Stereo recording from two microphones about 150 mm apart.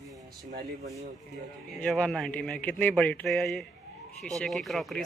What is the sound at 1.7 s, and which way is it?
A man's voice, 5° left (ahead or behind).